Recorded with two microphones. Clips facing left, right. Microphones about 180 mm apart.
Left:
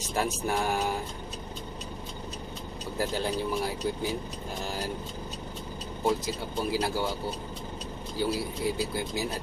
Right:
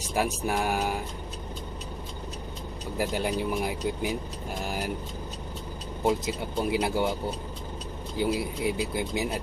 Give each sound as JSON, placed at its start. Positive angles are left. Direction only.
{"t": 0.1, "sound": "speech", "side_deg": -10}
{"t": 3.0, "sound": "speech", "side_deg": -10}
{"t": 6.0, "sound": "a man's voice", "side_deg": -20}
{"t": 8.2, "sound": "a man's voice", "side_deg": -20}